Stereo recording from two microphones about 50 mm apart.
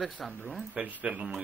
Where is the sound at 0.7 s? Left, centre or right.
Right.